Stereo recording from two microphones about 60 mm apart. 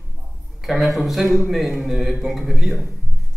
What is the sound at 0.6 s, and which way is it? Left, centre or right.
Speech, centre.